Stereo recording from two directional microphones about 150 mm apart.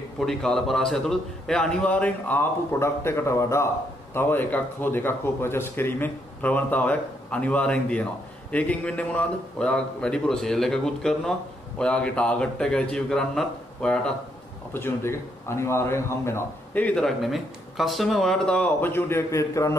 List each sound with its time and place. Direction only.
0.2 s a man's voice: 5° left (ahead or behind)
14.7 s a man's voice: 15° left (ahead or behind)